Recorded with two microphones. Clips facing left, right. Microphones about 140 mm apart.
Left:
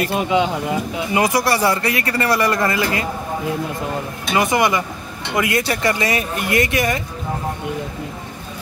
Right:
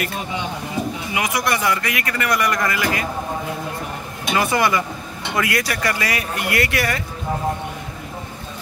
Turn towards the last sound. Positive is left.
turn(degrees=20)  # may be behind; listen again after turning